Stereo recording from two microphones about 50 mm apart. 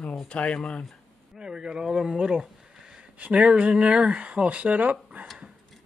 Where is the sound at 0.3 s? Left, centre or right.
Left.